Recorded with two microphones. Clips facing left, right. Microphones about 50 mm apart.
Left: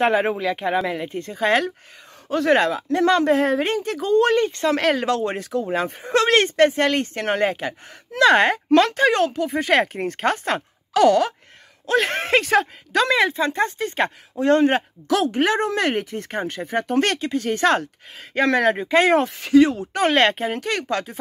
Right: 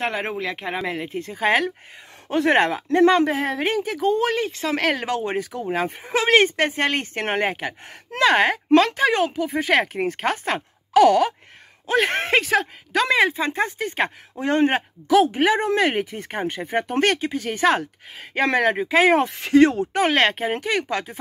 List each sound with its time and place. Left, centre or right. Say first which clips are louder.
0.0 s speech: left 6 dB; centre
2.2 s speech: even; right
3.3 s speech: left 4 dB; centre
5.0 s speech: left 2 dB; centre
8.3 s speech: even; centre
11.9 s speech: even; right
12.4 s speech: left 2 dB; centre
13.1 s speech: even; centre
19.1 s speech: left 1 dB; right
20.0 s speech: left 2 dB; centre
20.6 s speech: even; centre